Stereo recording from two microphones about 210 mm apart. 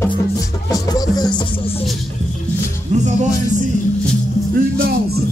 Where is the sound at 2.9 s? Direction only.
35° right (ahead or behind).